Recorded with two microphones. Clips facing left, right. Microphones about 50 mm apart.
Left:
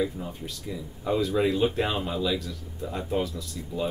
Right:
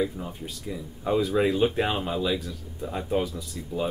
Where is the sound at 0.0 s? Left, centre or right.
Centre.